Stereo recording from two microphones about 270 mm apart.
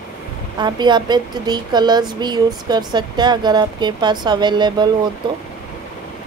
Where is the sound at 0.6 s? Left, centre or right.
Centre.